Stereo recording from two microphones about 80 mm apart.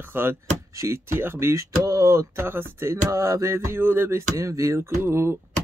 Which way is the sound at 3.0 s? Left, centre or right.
Right.